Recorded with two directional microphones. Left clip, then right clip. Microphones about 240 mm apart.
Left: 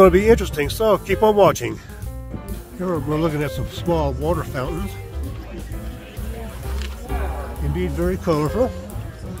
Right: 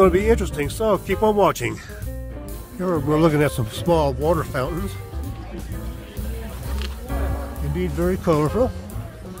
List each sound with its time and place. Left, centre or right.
0.0 s speech: centre
2.8 s speech: centre
3.2 s speech: right
7.7 s speech: centre